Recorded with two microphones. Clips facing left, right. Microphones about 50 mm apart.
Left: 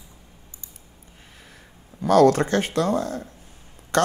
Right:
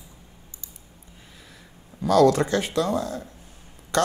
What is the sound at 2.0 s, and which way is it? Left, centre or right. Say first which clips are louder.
Speech: left 2 dB; left.